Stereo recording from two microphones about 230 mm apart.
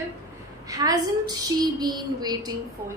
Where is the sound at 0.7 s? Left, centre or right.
Centre.